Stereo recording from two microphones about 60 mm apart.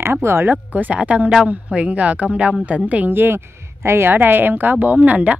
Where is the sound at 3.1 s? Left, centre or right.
Right.